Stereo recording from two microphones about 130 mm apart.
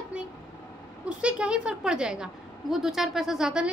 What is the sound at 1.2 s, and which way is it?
A woman's voice, 10° right (ahead or behind).